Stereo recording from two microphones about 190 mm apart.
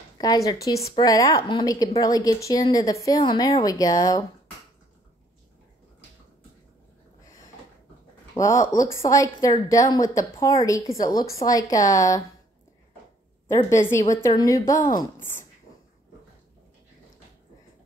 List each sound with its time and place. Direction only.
0.2 s a woman's voice: 20° left (ahead or behind)
8.4 s a woman's voice: 15° left (ahead or behind)
13.7 s a woman's voice: 15° left (ahead or behind)